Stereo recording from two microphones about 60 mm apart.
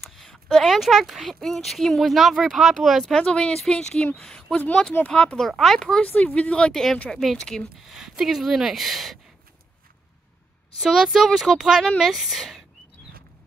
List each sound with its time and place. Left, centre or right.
0.0 s a sound: centre
0.7 s speech: centre
3.1 s speech: centre
5.5 s speech: centre
6.0 s speech: left
7.8 s speech: centre
10.8 s a woman's voice: centre